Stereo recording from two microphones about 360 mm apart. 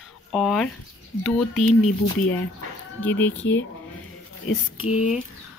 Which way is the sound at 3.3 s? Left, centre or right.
Left.